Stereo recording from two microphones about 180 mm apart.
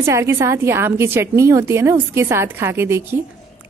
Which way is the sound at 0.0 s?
15° right (ahead or behind).